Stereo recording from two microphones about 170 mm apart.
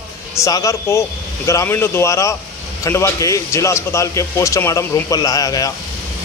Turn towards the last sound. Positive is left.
turn(degrees=20)  # may be behind; listen again after turning